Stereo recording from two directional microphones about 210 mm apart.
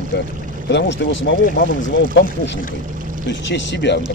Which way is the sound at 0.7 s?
55° left (ahead or behind).